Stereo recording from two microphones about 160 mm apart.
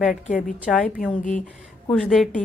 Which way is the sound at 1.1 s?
50° left (ahead or behind).